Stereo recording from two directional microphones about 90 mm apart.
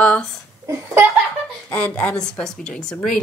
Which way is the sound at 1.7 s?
15° left (ahead or behind).